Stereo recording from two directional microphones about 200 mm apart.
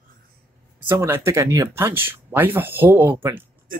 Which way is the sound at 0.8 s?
10° right (ahead or behind).